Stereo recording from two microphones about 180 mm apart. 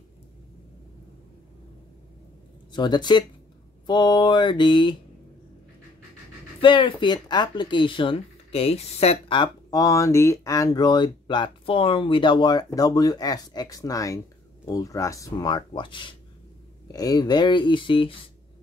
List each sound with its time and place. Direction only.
2.7 s speech: 25° left (ahead or behind)
6.6 s speech: 30° left (ahead or behind)